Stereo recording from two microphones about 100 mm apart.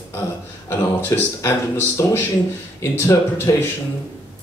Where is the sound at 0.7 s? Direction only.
25° left (ahead or behind).